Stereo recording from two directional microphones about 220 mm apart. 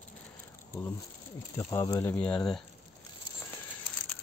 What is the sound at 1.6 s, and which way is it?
Speech, 15° left (ahead or behind).